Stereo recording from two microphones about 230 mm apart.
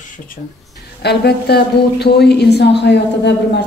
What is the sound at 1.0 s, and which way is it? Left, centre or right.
A woman's voice, left.